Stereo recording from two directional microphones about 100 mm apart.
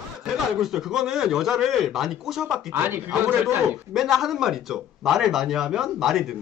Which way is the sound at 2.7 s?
20° right (ahead or behind).